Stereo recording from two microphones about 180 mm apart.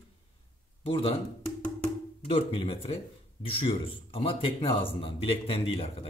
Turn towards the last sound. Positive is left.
turn(degrees=30)  # may be behind; listen again after turning